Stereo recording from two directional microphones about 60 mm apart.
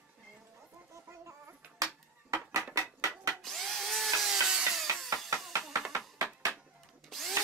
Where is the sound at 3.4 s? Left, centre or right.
Centre.